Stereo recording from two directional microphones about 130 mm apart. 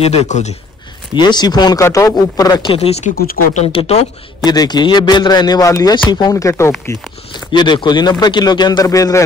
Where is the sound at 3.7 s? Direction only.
50° left (ahead or behind).